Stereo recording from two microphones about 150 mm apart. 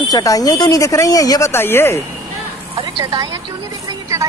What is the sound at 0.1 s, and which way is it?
Speech, 25° left (ahead or behind).